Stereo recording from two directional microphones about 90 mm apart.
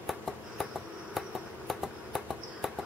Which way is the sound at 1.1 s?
Centre (ahead or behind).